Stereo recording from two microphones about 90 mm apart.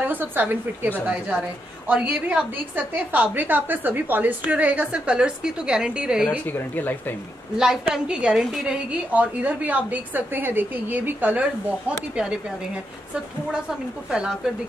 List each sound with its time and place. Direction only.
0.0 s a woman's voice: 20° right (ahead or behind)
1.9 s a woman's voice: 15° right (ahead or behind)
6.4 s speech: 20° left (ahead or behind)
7.5 s a woman's voice: 5° right (ahead or behind)
9.1 s a woman's voice: 15° right (ahead or behind)
14.1 s a woman's voice: 5° right (ahead or behind)